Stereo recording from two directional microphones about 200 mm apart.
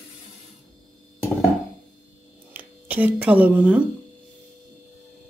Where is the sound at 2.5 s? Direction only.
10° right (ahead or behind).